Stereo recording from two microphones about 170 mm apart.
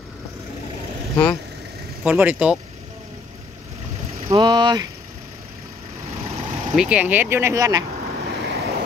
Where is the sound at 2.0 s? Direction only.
10° right (ahead or behind).